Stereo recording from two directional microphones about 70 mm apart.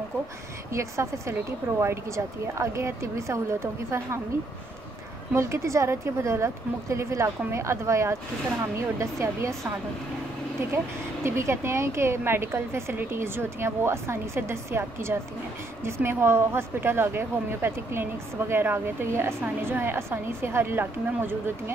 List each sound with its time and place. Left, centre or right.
0.7 s a woman's voice: right
5.3 s a woman's voice: right
11.2 s a woman's voice: right